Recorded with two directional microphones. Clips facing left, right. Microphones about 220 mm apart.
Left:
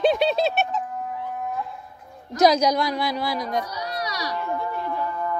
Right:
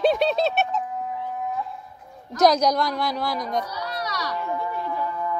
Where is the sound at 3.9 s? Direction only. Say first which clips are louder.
Left 1 dB; 15° left (ahead or behind).